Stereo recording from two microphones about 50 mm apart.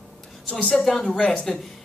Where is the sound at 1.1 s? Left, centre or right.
Centre.